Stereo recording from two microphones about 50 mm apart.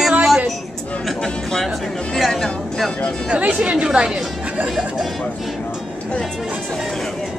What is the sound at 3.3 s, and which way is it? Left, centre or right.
Speech, right.